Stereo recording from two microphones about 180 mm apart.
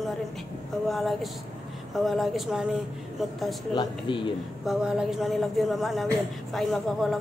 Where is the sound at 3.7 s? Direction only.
25° left (ahead or behind).